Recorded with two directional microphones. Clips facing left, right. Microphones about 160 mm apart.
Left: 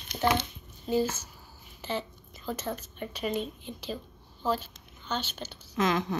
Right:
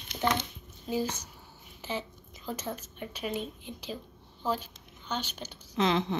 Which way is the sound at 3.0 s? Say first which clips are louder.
Left 3 dB; 5° right (ahead or behind).